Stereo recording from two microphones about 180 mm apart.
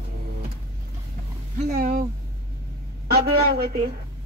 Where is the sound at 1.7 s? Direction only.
50° right (ahead or behind).